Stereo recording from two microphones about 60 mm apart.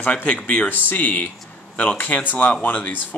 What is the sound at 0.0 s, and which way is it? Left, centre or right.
Speech, left.